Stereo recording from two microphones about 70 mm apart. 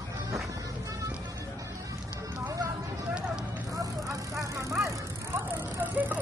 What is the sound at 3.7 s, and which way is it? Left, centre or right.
Vehicle, right.